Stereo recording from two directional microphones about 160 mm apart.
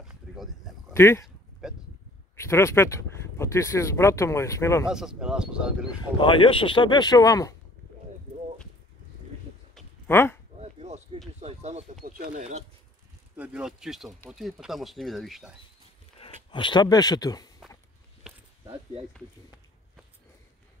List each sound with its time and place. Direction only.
0.0 s a sound: centre (ahead or behind)
0.9 s speech: 15° left (ahead or behind)
1.2 s a sound: 5° right (ahead or behind)
2.3 s speech: 15° left (ahead or behind)
4.8 s speech: 5° right (ahead or behind)
6.1 s speech: 35° left (ahead or behind)
10.0 s speech: 15° left (ahead or behind)
10.6 s a sound: 40° right (ahead or behind)
11.4 s speech: 40° right (ahead or behind)
12.0 s speech: 55° right (ahead or behind)
13.4 s speech: 5° right (ahead or behind)
16.2 s speech: 30° left (ahead or behind)